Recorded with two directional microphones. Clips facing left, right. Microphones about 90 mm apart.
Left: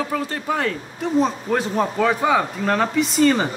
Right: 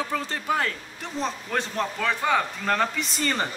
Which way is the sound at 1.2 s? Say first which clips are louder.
Left 7 dB; 10° left (ahead or behind).